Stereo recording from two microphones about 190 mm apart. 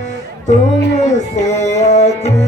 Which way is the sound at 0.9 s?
40° left (ahead or behind).